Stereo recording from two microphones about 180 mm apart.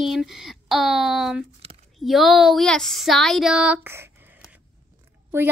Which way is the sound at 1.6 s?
35° right (ahead or behind).